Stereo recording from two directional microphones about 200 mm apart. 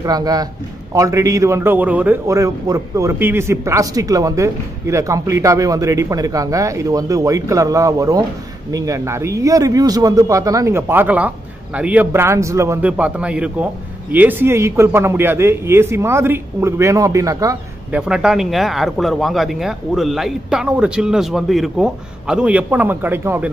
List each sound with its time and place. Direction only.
0.0 s a man's voice: 20° right (ahead or behind)
17.9 s speech: 5° right (ahead or behind)